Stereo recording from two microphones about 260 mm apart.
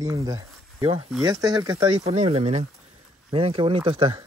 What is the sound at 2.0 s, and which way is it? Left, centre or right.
Speech, right.